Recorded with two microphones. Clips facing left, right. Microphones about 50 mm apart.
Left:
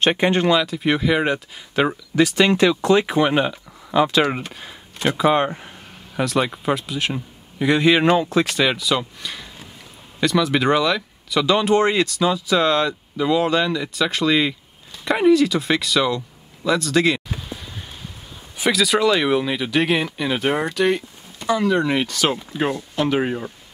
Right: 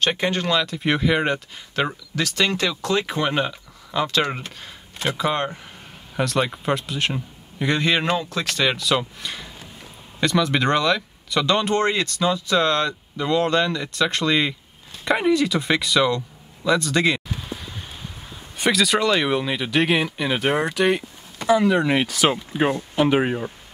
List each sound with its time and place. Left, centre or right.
0.0 s speech: left
0.6 s speech: centre
6.1 s speech: centre
17.5 s a sound: centre
18.6 s speech: centre